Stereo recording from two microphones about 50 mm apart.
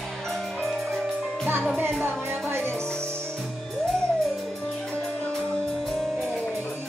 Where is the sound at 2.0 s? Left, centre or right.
Right.